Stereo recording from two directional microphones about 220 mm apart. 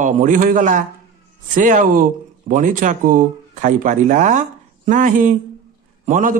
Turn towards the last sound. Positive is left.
turn(degrees=-35)  # may be behind; listen again after turning